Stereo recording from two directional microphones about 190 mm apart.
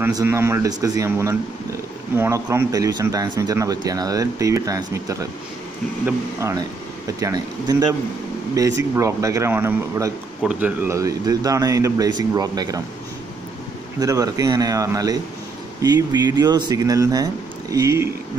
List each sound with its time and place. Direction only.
0.0 s speech: 15° right (ahead or behind)
13.9 s speech: 20° right (ahead or behind)